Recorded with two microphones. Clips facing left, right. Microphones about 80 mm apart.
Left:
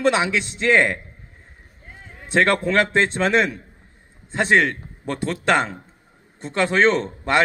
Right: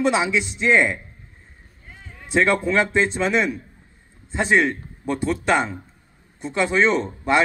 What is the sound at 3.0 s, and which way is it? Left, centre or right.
Speech, left.